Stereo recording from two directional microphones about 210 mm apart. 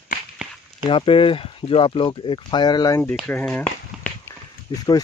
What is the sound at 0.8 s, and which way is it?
Speech, 25° left (ahead or behind).